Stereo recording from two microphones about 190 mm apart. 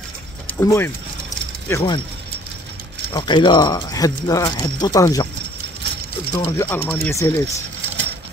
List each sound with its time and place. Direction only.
0.6 s speech: 10° left (ahead or behind)
3.1 s speech: 25° left (ahead or behind)
6.3 s speech: 15° left (ahead or behind)